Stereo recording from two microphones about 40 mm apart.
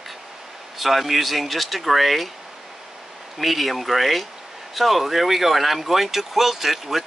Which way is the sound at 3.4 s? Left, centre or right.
Centre.